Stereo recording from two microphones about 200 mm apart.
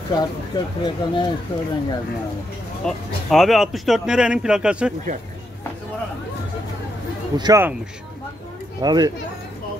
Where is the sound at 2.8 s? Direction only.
Centre (ahead or behind).